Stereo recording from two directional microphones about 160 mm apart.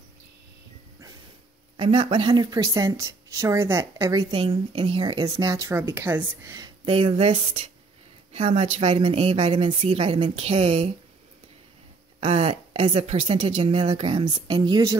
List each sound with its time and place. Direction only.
1.8 s speech: 35° right (ahead or behind); by 4.2 s 20° right (ahead or behind)
4.3 s speech: 35° right (ahead or behind); by 6.7 s 20° right (ahead or behind)
6.9 s a woman's voice: 35° right (ahead or behind)
12.2 s a woman's voice: 35° right (ahead or behind)